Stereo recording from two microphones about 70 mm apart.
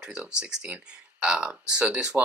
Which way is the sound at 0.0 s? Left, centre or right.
Centre.